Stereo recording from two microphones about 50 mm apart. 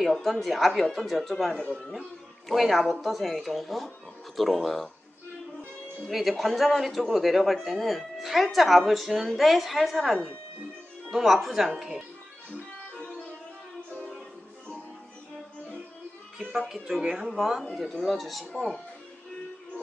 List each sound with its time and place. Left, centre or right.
0.1 s a man's voice: centre
6.0 s a man's voice: centre
12.9 s music: centre
16.3 s speech: centre
17.3 s a man's voice: centre